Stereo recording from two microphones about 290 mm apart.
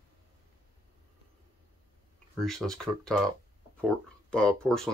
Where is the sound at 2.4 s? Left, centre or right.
Centre.